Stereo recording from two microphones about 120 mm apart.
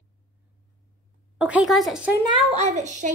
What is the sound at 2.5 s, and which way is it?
Speech, 70° right (ahead or behind).